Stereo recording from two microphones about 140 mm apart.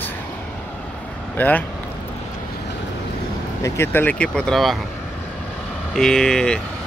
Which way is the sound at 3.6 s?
15° left (ahead or behind).